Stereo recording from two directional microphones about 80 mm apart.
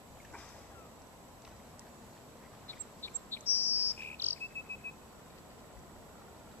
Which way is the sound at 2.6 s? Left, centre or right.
Left.